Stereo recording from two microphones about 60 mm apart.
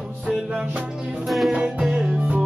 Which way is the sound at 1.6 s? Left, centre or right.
Centre.